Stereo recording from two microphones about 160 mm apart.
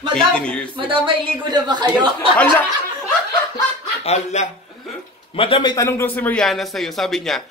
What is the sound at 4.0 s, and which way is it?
Speech, 45° left (ahead or behind).